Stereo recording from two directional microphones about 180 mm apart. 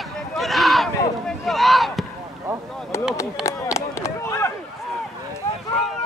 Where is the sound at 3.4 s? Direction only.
15° left (ahead or behind).